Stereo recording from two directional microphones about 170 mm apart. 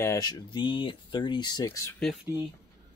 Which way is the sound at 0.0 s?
20° left (ahead or behind).